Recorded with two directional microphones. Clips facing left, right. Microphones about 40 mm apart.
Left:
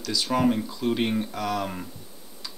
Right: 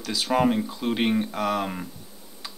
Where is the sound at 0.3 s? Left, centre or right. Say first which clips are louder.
Right 2 dB; right.